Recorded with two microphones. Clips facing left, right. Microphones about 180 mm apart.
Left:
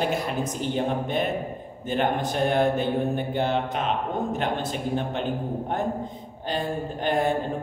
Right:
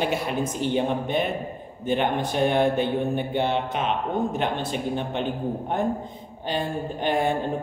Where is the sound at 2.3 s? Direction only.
40° left (ahead or behind).